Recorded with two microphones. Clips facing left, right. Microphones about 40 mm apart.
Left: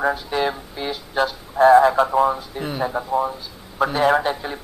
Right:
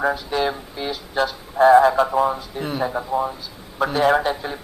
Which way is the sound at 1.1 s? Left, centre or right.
Left.